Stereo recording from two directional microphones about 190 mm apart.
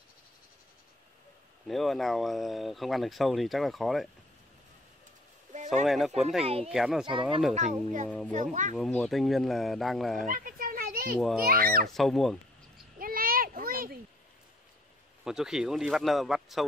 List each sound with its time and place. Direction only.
1.7 s speech: centre (ahead or behind)
5.5 s a sound: 40° right (ahead or behind)
5.9 s speech: centre (ahead or behind)
6.4 s speech: 30° right (ahead or behind)
6.7 s speech: 5° right (ahead or behind)
7.1 s speech: 25° right (ahead or behind)
7.5 s speech: 40° right (ahead or behind)
8.7 s speech: centre (ahead or behind)
10.2 s a sound: 45° right (ahead or behind)
11.4 s a child's voice: 50° right (ahead or behind)
11.9 s speech: centre (ahead or behind)
13.0 s a sound: 50° right (ahead or behind)
15.2 s speech: 5° right (ahead or behind)